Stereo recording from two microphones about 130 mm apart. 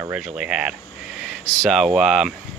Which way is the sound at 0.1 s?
10° right (ahead or behind).